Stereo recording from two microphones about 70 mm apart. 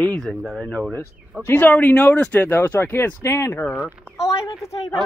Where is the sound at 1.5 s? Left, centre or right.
Centre.